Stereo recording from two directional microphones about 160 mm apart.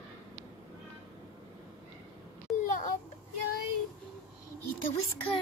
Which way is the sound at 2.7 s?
55° left (ahead or behind).